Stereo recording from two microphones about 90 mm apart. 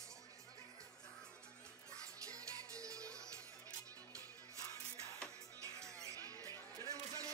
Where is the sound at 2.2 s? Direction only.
40° right (ahead or behind).